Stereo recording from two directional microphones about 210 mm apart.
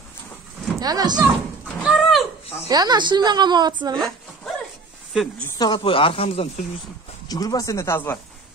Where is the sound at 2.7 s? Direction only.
20° right (ahead or behind).